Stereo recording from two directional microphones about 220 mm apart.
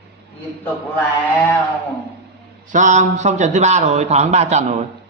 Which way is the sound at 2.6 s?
35° right (ahead or behind).